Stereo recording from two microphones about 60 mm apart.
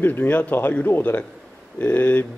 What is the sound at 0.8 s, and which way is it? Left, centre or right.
Speech, left.